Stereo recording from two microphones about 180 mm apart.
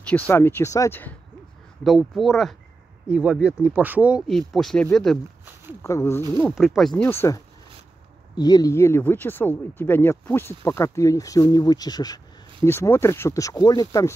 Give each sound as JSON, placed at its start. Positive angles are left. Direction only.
{"t": 0.0, "sound": "speech", "side_deg": 10}
{"t": 1.8, "sound": "speech", "side_deg": 0}
{"t": 5.8, "sound": "speech", "side_deg": 15}
{"t": 6.5, "sound": "speech", "side_deg": 0}
{"t": 7.0, "sound": "speech", "side_deg": 15}